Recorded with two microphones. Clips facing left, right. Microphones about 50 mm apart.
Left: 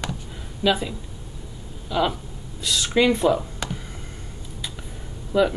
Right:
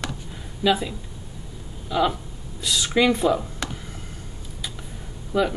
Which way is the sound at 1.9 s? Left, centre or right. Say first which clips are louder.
Right 1 dB; centre.